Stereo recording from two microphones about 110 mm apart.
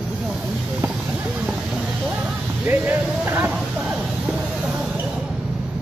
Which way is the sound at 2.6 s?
20° right (ahead or behind).